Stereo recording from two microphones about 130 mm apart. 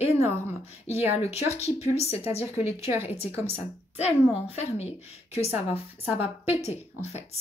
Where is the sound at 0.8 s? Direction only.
20° right (ahead or behind).